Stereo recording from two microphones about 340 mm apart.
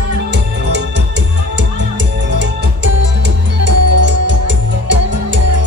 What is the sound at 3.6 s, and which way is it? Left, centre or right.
Music, right.